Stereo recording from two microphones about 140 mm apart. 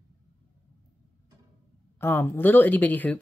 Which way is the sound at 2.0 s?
15° left (ahead or behind).